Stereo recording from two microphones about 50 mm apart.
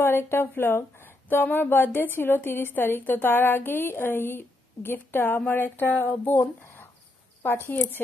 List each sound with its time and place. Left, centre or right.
0.0 s a woman's voice: left